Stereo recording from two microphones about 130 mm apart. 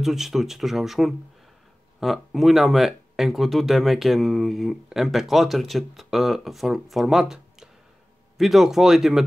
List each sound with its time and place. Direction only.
0.0 s speech: 5° right (ahead or behind)